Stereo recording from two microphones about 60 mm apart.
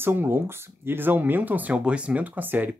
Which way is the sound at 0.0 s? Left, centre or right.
Right.